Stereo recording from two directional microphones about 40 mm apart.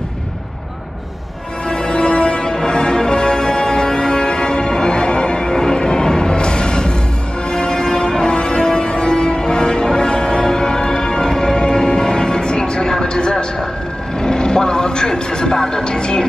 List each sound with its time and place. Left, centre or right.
1.7 s music: left
13.0 s a sound: left
14.2 s music: centre